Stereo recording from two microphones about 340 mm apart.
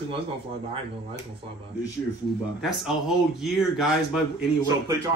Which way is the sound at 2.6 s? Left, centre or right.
Centre.